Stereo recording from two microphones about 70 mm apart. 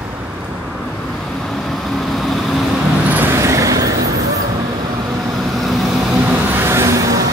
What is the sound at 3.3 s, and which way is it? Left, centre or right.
Vehicle, right.